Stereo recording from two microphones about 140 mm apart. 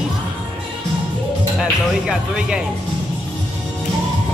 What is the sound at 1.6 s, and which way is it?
Speech, 5° right (ahead or behind).